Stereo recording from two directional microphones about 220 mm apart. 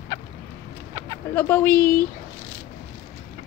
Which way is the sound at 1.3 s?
10° left (ahead or behind).